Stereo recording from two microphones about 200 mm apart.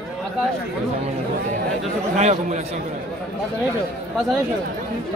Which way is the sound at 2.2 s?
35° right (ahead or behind).